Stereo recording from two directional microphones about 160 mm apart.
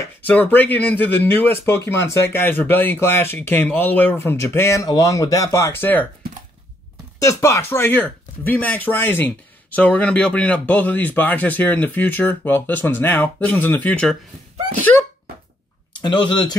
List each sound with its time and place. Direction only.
0.3 s speech: 10° left (ahead or behind)
7.2 s speech: 20° left (ahead or behind)
16.0 s speech: 30° left (ahead or behind)